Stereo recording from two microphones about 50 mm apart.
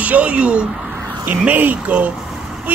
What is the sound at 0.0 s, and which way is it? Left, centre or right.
Speech, right.